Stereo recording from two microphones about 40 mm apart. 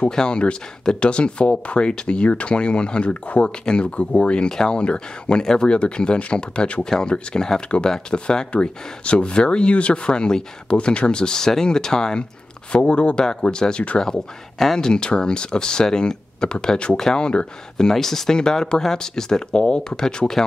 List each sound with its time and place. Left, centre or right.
0.1 s speech: left
12.7 s speech: left
17.9 s speech: centre